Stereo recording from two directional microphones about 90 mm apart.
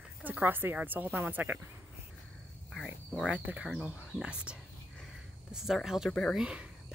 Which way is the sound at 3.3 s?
15° right (ahead or behind).